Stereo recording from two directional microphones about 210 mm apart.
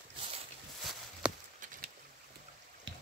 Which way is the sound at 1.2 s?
5° right (ahead or behind).